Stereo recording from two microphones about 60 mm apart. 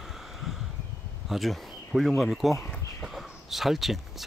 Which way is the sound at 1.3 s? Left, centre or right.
Centre.